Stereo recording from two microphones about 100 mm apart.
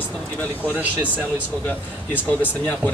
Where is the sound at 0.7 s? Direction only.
15° right (ahead or behind).